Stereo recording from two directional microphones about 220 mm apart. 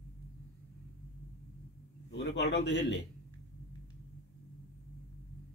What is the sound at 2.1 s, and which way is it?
Speech, 50° left (ahead or behind).